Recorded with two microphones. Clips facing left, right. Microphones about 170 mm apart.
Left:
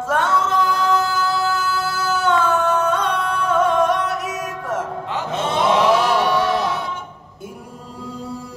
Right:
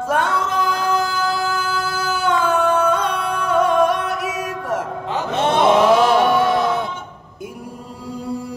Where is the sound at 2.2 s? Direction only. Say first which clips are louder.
Right 1 dB; 10° right (ahead or behind).